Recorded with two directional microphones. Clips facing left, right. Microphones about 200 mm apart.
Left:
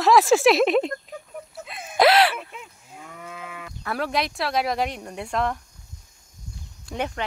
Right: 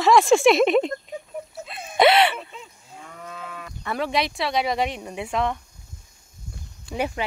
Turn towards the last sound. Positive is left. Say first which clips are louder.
# right 2 dB
turn(degrees=-5)  # may be behind; listen again after turning